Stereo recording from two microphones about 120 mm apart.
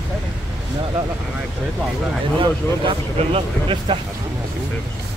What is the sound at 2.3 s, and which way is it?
Speech, 50° right (ahead or behind).